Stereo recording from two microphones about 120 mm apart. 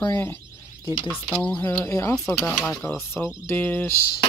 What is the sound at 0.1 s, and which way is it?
Speech, 15° left (ahead or behind).